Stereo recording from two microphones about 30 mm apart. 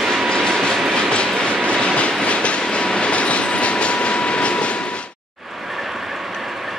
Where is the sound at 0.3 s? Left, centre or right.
Left.